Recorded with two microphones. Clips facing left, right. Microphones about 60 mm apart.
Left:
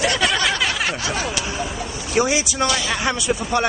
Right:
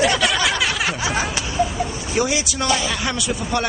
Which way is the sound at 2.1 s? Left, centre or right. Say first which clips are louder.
Left 3 dB; left.